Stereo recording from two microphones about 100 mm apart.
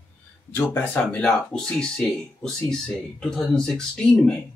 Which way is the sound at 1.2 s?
5° left (ahead or behind).